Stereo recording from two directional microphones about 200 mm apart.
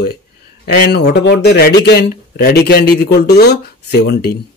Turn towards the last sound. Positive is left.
turn(degrees=50)  # may be behind; listen again after turning